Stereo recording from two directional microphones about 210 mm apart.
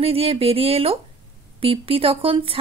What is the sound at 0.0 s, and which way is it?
A woman's voice, 25° right (ahead or behind).